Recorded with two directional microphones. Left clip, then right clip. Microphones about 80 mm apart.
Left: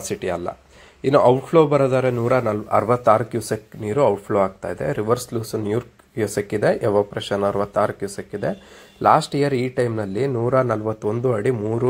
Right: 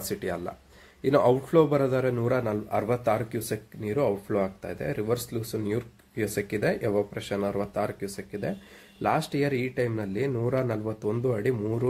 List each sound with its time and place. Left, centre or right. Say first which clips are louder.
0.1 s a man's voice: left 7 dB; left